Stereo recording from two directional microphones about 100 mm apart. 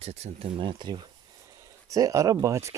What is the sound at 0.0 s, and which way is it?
Speech, 90° right.